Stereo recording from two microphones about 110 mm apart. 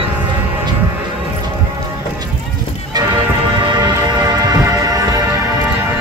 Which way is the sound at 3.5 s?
45° right (ahead or behind).